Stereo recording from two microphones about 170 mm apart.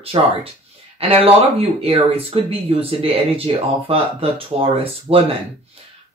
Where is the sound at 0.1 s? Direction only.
30° right (ahead or behind).